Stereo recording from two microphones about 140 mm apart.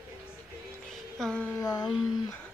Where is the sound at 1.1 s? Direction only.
5° left (ahead or behind).